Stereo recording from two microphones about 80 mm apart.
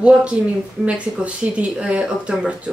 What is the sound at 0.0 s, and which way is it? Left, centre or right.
Speech, centre.